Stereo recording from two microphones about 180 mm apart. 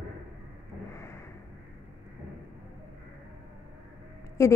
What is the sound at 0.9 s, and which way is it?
Vehicle, 15° left (ahead or behind).